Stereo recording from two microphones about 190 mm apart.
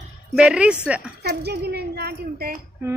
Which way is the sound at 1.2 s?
60° right (ahead or behind).